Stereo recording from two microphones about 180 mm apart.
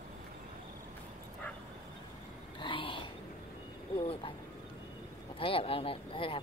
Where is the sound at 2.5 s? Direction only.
25° left (ahead or behind).